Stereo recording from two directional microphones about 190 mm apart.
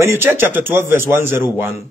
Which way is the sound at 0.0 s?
10° right (ahead or behind).